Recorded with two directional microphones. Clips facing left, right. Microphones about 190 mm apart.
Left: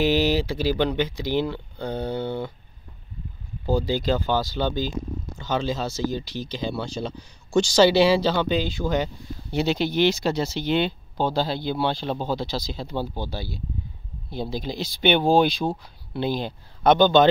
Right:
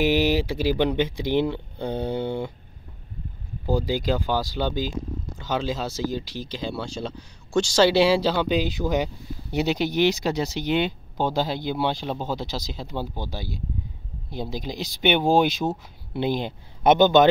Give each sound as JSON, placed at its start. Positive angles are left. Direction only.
{"t": 0.0, "sound": "speech", "side_deg": -15}
{"t": 3.6, "sound": "speech", "side_deg": -15}